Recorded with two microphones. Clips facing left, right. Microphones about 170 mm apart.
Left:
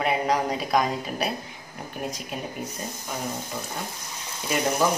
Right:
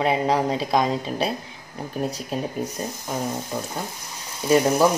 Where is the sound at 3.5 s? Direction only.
45° right (ahead or behind).